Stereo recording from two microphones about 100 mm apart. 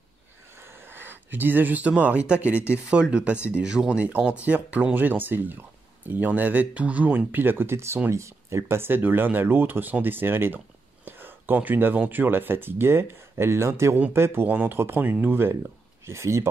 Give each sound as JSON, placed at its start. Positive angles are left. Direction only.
{"t": 0.7, "sound": "speech", "side_deg": -20}